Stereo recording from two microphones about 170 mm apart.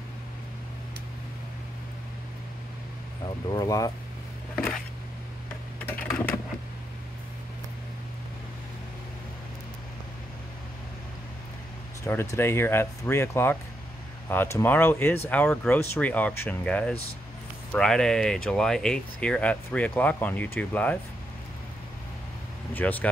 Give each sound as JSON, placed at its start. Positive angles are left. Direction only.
{"t": 3.5, "sound": "speech", "side_deg": 20}
{"t": 5.8, "sound": "computer keyboard", "side_deg": 5}
{"t": 12.1, "sound": "speech", "side_deg": 15}
{"t": 22.8, "sound": "speech", "side_deg": 10}